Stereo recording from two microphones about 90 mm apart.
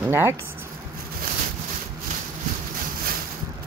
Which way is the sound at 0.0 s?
25° right (ahead or behind).